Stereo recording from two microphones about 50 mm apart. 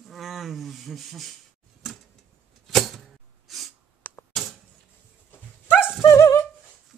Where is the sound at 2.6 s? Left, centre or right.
Centre.